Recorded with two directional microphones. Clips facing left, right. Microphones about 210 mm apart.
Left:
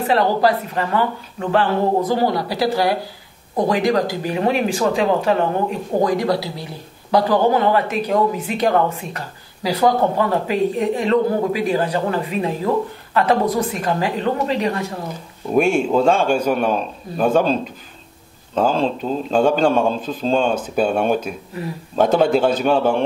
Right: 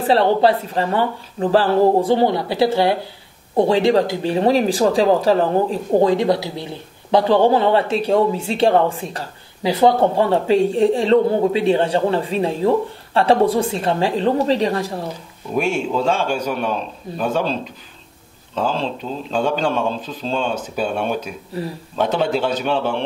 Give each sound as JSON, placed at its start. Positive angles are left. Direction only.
{"t": 0.0, "sound": "speech", "side_deg": -30}
{"t": 15.5, "sound": "speech", "side_deg": 50}
{"t": 21.5, "sound": "speech", "side_deg": -35}
{"t": 21.9, "sound": "speech", "side_deg": 45}